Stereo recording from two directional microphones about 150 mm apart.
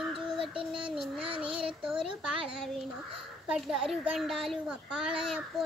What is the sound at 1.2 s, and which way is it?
Child singing, 35° right (ahead or behind).